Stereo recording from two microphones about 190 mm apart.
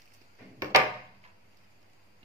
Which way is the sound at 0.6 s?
15° right (ahead or behind).